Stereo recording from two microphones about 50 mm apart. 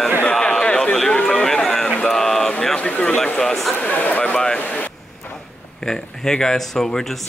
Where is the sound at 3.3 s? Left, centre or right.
Centre.